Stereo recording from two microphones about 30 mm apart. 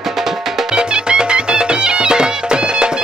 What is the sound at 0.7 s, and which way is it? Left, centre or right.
Music, right.